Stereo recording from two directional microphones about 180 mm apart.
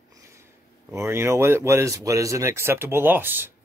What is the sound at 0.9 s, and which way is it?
Speech, 15° right (ahead or behind).